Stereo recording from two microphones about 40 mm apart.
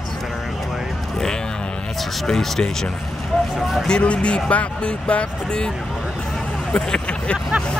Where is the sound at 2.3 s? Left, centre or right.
Centre.